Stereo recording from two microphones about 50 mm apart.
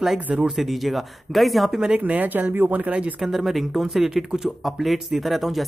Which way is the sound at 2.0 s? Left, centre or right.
Right.